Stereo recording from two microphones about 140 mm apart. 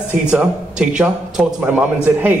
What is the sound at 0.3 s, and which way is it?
A man's voice, 5° right (ahead or behind).